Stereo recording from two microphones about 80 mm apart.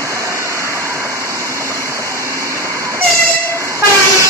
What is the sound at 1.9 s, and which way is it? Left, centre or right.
Vehicle, right.